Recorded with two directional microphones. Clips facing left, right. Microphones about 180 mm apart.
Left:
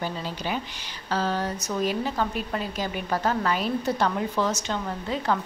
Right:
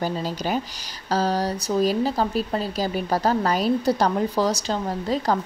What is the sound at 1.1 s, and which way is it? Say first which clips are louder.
Speech: right 4 dB; 40° right (ahead or behind).